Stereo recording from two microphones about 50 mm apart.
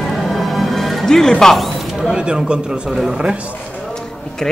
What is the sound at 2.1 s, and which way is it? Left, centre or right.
Speech, centre.